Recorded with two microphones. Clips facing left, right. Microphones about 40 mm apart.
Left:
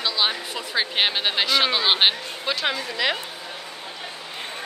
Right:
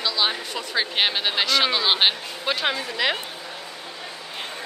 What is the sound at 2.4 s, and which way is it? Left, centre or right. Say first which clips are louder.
Speech: right 1 dB; centre.